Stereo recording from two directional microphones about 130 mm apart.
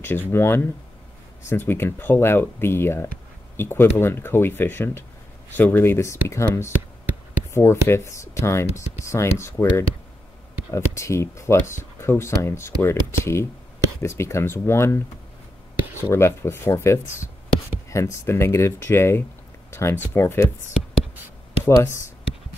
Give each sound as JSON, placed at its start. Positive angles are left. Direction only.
{"t": 0.0, "sound": "speech", "side_deg": 15}
{"t": 21.6, "sound": "speech", "side_deg": 20}